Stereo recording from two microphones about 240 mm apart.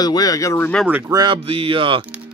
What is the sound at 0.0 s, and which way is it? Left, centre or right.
Speech, centre.